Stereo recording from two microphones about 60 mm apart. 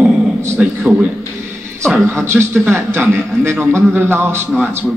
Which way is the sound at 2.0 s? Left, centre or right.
Right.